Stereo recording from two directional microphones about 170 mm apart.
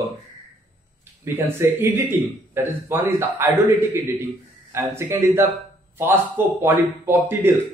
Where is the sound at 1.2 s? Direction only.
15° right (ahead or behind).